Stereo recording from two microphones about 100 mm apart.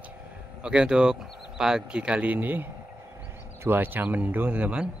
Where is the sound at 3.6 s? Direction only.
20° right (ahead or behind).